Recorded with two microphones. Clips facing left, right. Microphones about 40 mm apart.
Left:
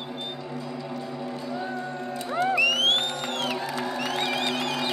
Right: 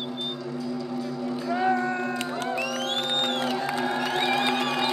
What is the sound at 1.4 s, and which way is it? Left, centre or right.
Music, right.